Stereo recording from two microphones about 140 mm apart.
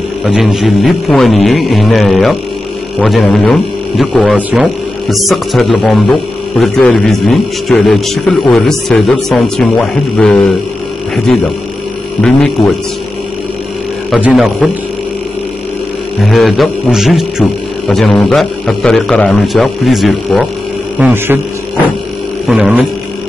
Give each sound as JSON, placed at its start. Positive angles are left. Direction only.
{"t": 0.2, "sound": "a man's voice", "side_deg": 0}
{"t": 4.4, "sound": "speech", "side_deg": -10}
{"t": 5.0, "sound": "a man's voice", "side_deg": 0}
{"t": 14.2, "sound": "a man's voice", "side_deg": -5}
{"t": 16.3, "sound": "a man's voice", "side_deg": 0}
{"t": 21.0, "sound": "speech", "side_deg": -15}
{"t": 22.5, "sound": "a man's voice", "side_deg": -5}